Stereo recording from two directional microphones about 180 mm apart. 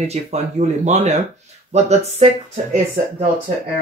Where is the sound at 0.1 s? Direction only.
40° right (ahead or behind).